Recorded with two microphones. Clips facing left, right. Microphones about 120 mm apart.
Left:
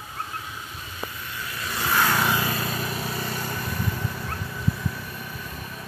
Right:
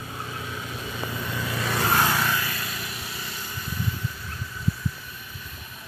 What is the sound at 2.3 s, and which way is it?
Vehicle, 30° left (ahead or behind).